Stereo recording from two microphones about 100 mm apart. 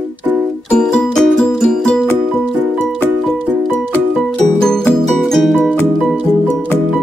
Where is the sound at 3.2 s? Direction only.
5° left (ahead or behind).